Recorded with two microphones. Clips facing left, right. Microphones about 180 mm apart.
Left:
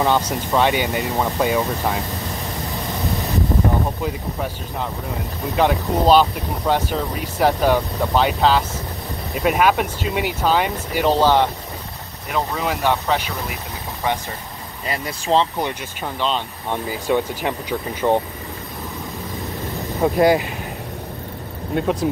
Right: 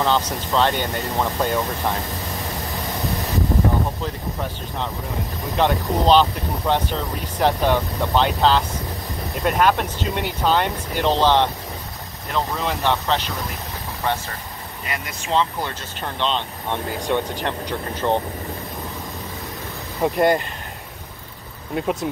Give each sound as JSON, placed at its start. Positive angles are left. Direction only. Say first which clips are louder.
{"t": 0.0, "sound": "speech", "louder": "left 2 dB", "side_deg": 15}
{"t": 4.0, "sound": "speech", "louder": "left 3 dB", "side_deg": 5}
{"t": 14.9, "sound": "speech", "louder": "left 5 dB", "side_deg": 30}
{"t": 16.0, "sound": "speech", "louder": "left 1 dB", "side_deg": 5}
{"t": 20.0, "sound": "speech", "louder": "left 2 dB", "side_deg": 0}
{"t": 21.7, "sound": "speech", "louder": "left 3 dB", "side_deg": 0}